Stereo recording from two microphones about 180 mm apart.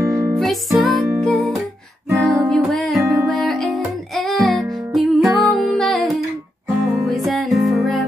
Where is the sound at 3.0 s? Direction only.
15° right (ahead or behind).